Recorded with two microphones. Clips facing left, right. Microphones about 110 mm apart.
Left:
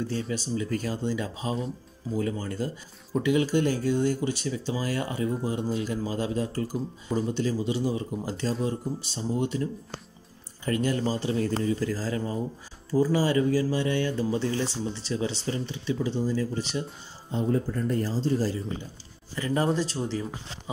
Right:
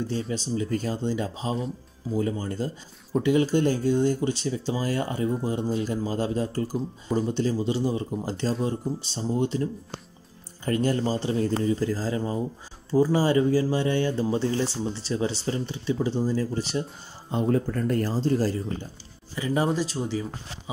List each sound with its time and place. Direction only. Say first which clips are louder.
0.3 s speech: right 2 dB; 25° right (ahead or behind)
17.3 s speech: right 2 dB; 70° right (ahead or behind)
19.3 s speech: right 1 dB; 10° right (ahead or behind)